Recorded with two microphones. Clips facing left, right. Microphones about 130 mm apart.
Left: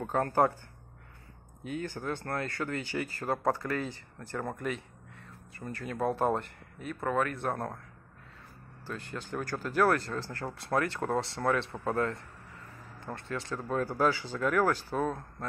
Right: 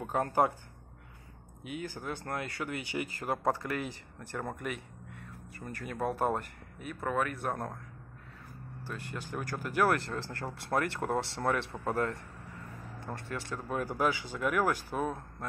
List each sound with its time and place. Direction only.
0.0 s speech: 10° right (ahead or behind)
1.6 s speech: 10° right (ahead or behind)
8.8 s speech: 10° right (ahead or behind)